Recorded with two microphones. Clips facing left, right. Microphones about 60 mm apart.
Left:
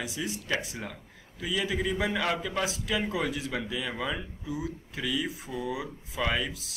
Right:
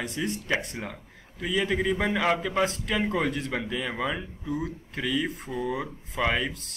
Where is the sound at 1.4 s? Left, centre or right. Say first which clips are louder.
Right 4 dB; centre.